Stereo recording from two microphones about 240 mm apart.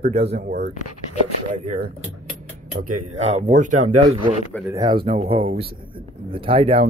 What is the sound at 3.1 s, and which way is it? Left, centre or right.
Speech, right.